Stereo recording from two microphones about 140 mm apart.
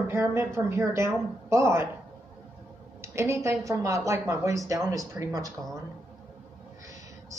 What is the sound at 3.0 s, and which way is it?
A woman's voice, 20° right (ahead or behind).